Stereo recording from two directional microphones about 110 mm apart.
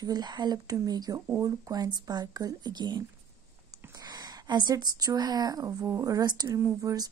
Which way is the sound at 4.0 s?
40° right (ahead or behind).